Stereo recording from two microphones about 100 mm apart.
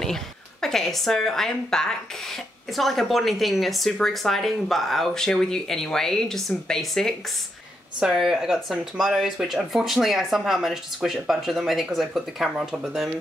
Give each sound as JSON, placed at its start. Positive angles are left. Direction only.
{"t": 0.0, "sound": "a woman's voice", "side_deg": 5}